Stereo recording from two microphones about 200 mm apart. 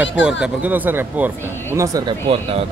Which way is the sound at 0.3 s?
5° right (ahead or behind).